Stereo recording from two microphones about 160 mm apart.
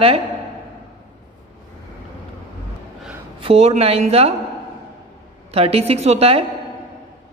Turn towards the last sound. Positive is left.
turn(degrees=-40)  # may be behind; listen again after turning